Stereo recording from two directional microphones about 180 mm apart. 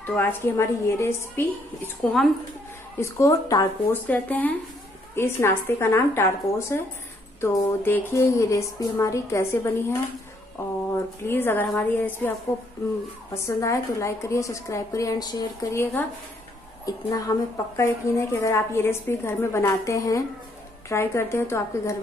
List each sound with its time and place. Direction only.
0.0 s a woman's voice: 10° left (ahead or behind)
3.0 s a woman's voice: 15° left (ahead or behind)
11.2 s a woman's voice: 10° left (ahead or behind)
13.3 s a woman's voice: 15° left (ahead or behind)